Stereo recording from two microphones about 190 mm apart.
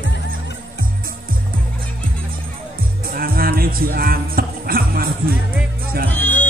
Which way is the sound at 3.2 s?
50° right (ahead or behind).